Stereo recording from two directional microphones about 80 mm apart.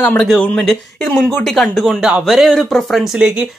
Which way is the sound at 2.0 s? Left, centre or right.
Centre.